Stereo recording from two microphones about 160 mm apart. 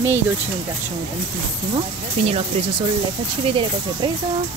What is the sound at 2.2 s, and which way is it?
Speech, 40° right (ahead or behind).